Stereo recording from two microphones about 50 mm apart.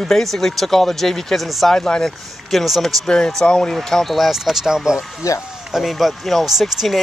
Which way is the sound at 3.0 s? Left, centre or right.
Centre.